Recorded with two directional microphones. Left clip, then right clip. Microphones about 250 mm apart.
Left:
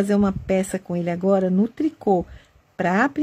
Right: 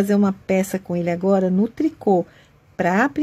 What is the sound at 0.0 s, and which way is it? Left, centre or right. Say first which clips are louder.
Speech: right 1 dB; centre.